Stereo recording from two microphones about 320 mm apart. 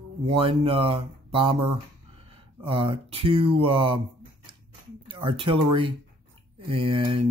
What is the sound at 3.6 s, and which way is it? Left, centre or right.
Speech, centre.